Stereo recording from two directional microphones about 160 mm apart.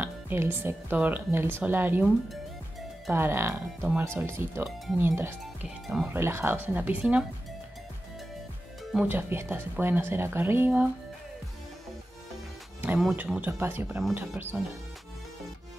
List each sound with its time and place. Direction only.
0.0 s speech: 15° right (ahead or behind)
3.1 s speech: 15° right (ahead or behind)
5.4 s speech: centre (ahead or behind)
6.0 s speech: 15° right (ahead or behind)
8.9 s speech: 10° right (ahead or behind)
13.0 s speech: 5° right (ahead or behind)